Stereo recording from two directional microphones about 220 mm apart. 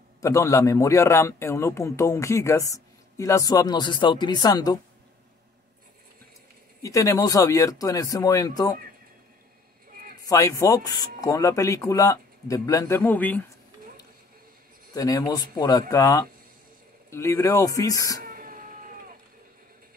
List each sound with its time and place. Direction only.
0.2 s a man's voice: 15° left (ahead or behind)
6.8 s a man's voice: 15° left (ahead or behind)
10.2 s a man's voice: 15° left (ahead or behind)
15.0 s a man's voice: 15° left (ahead or behind)
18.2 s a sound: 40° right (ahead or behind)